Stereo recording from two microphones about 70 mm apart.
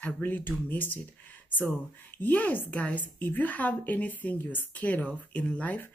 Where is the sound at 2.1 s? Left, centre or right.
Left.